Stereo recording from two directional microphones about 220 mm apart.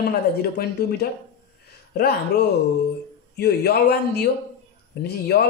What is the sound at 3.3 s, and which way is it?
Speech, 45° left (ahead or behind).